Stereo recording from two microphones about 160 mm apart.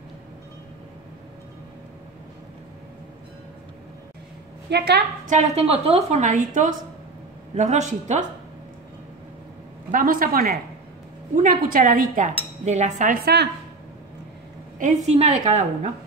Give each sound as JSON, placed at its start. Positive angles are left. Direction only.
{"t": 4.6, "sound": "a woman's voice", "side_deg": -90}
{"t": 5.2, "sound": "a woman's voice", "side_deg": -45}
{"t": 9.8, "sound": "cutlery", "side_deg": -60}
{"t": 14.8, "sound": "a woman's voice", "side_deg": -45}